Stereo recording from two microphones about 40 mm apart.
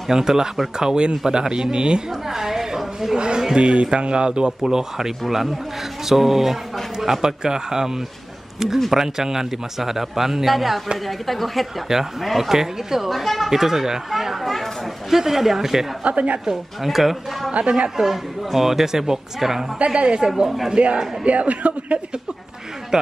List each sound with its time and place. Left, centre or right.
0.1 s a man's voice: centre
2.2 s a sound: centre
3.2 s a man's voice: right
16.0 s speech: right
16.8 s speech: centre
17.5 s speech: right
17.9 s a man's voice: centre
19.8 s speech: right